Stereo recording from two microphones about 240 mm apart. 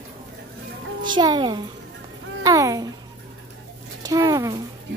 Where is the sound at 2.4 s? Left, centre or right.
Centre.